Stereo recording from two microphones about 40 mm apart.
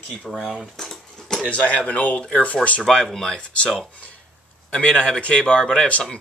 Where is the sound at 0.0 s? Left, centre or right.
Centre.